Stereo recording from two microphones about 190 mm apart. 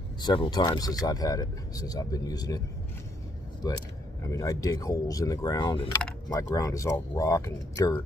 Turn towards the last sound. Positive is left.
turn(degrees=15)  # may be behind; listen again after turning